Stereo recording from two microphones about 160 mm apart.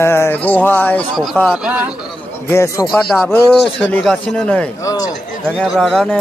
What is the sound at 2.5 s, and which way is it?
Speech, 20° left (ahead or behind).